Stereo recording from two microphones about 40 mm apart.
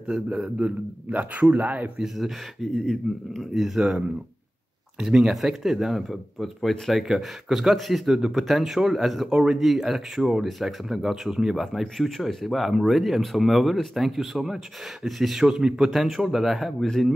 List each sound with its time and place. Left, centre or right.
0.0 s a man's voice: right
2.0 s speech: centre
2.7 s speech: centre
3.3 s speech: centre
4.9 s speech: centre
15.4 s speech: centre
15.8 s speech: centre